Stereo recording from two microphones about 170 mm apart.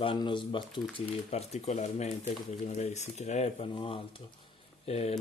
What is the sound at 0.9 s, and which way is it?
Speech, 40° left (ahead or behind).